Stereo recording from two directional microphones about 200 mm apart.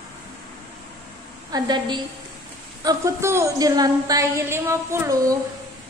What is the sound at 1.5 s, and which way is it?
A woman's voice, 20° right (ahead or behind).